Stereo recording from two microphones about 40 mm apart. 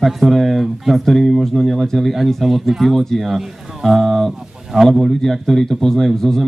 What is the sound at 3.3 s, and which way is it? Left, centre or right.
Speech, centre.